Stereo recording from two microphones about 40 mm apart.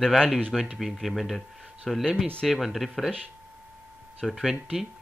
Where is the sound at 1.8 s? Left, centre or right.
Centre.